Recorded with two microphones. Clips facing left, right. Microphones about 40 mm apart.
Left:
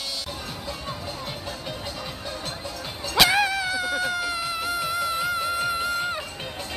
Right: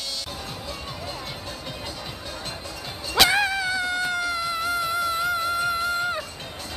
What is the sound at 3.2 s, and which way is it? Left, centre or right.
Music, centre.